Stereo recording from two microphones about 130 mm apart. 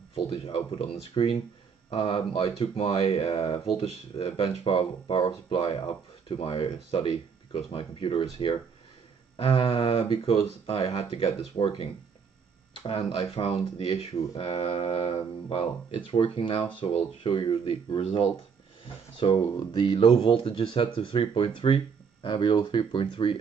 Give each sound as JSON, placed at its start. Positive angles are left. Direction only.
{"t": 0.1, "sound": "speech", "side_deg": 45}
{"t": 19.4, "sound": "speech", "side_deg": 30}